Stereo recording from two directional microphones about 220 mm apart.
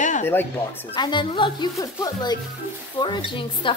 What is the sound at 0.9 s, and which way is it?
Speech, 20° left (ahead or behind).